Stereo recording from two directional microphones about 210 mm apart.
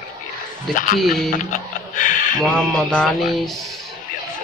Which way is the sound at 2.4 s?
5° left (ahead or behind).